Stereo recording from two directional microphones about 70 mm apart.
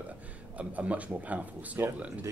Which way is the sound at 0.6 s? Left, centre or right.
Centre.